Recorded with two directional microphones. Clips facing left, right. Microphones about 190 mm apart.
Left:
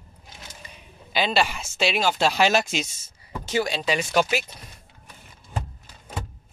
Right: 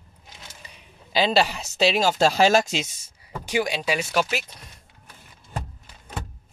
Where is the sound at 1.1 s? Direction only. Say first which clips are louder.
Right 3 dB; 35° right (ahead or behind).